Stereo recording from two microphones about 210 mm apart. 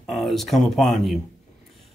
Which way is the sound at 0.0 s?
Centre (ahead or behind).